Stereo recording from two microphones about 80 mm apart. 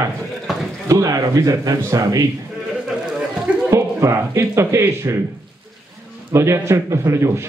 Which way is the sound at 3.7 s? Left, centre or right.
Right.